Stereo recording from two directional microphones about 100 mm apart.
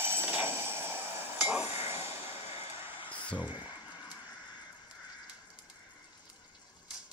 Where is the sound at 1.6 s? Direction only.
90° left.